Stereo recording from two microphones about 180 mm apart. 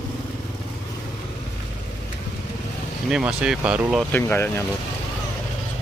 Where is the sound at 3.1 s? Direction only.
5° right (ahead or behind).